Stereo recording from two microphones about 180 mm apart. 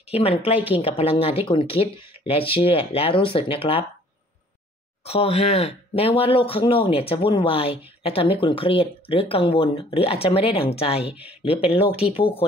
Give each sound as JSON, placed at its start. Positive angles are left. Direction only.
{"t": 0.1, "sound": "speech", "side_deg": 30}
{"t": 5.0, "sound": "speech", "side_deg": 35}